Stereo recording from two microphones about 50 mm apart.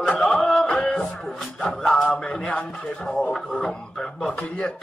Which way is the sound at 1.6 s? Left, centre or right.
Centre.